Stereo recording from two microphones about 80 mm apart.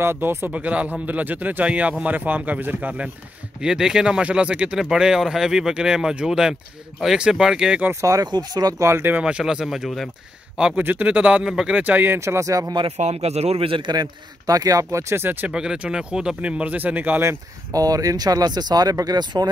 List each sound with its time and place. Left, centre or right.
0.0 s speech: right
0.5 s speech: centre
3.6 s speech: centre
7.9 s speech: right
8.3 s speech: right
8.8 s speech: right
9.2 s speech: centre
10.8 s speech: right
11.8 s speech: right
12.4 s speech: right
13.7 s a man's voice: right
14.4 s speech: right
15.4 s speech: centre
17.7 s speech: right